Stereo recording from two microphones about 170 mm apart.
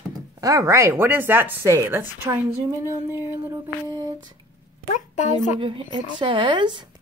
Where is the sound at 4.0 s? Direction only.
25° right (ahead or behind).